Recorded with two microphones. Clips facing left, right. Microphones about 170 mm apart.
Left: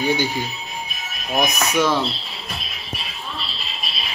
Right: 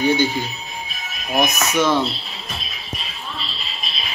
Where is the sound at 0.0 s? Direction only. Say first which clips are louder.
Right 3 dB; 10° left (ahead or behind).